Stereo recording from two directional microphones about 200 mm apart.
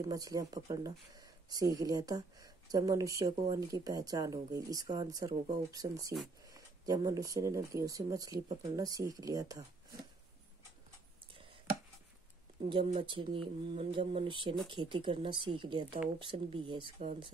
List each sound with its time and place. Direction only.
0.1 s speech: 20° right (ahead or behind)
12.6 s speech: 25° right (ahead or behind)